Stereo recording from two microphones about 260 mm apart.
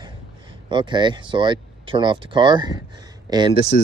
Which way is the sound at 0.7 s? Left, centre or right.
Centre.